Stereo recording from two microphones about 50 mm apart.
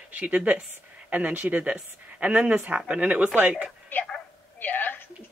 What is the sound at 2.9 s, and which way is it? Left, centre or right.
Speech, right.